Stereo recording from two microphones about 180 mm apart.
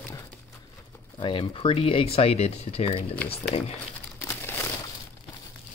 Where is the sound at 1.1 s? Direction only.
25° left (ahead or behind).